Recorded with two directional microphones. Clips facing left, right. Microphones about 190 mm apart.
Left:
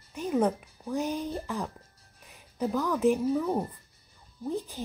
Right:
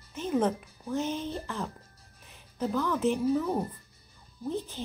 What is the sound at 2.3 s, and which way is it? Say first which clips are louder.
Music: left 1 dB; centre (ahead or behind).